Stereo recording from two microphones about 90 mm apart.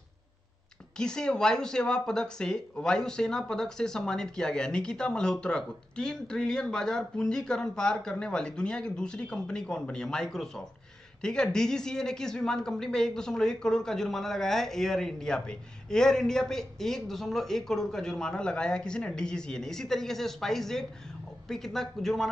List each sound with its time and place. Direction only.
0.9 s speech: 10° left (ahead or behind)